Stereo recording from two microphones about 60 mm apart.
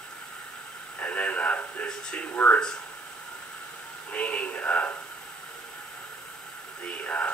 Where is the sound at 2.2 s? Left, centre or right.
Left.